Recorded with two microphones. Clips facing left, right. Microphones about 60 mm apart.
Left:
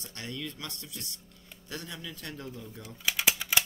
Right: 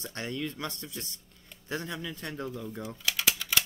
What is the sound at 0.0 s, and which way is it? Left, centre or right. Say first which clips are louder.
A man's voice: right 4 dB; right.